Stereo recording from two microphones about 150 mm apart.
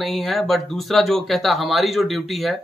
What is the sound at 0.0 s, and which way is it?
Speech, centre (ahead or behind).